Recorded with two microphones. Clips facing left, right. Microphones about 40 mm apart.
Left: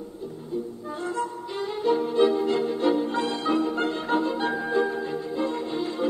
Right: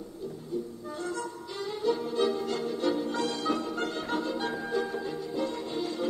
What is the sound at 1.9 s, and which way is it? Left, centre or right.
Music, left.